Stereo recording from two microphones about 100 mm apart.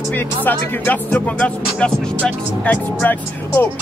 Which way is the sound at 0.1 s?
20° left (ahead or behind).